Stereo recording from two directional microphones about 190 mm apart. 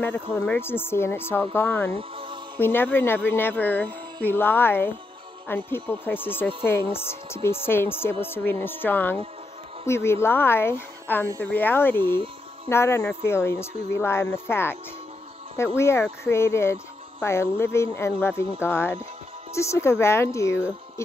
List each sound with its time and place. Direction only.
0.0 s speech: 10° left (ahead or behind)
1.9 s speech: 30° right (ahead or behind)
2.5 s speech: 10° left (ahead or behind)